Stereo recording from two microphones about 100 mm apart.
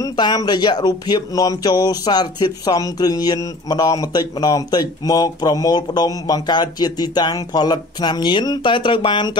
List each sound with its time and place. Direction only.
0.0 s speech: 45° left (ahead or behind)